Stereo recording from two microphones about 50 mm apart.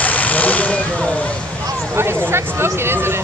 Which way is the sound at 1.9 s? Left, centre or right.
Right.